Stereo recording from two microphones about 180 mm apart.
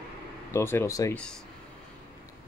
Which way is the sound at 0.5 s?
15° left (ahead or behind).